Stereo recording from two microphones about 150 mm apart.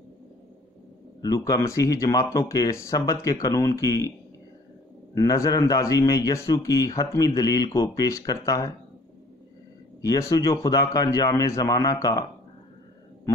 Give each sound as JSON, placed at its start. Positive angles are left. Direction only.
{"t": 1.2, "sound": "speech", "side_deg": 25}
{"t": 5.1, "sound": "speech", "side_deg": 20}
{"t": 10.0, "sound": "speech", "side_deg": 20}